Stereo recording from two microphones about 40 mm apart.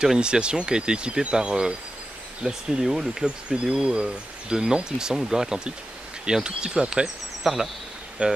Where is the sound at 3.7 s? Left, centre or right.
Right.